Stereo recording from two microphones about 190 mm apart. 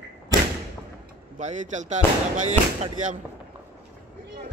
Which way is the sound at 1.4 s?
40° right (ahead or behind).